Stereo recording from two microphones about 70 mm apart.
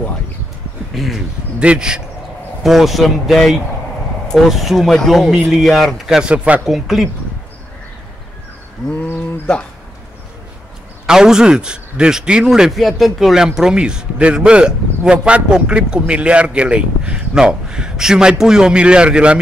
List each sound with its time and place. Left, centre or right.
0.9 s speech: centre
1.6 s speech: centre
6.2 s speech: centre
6.6 s speech: centre
8.9 s bird: left
11.1 s speech: centre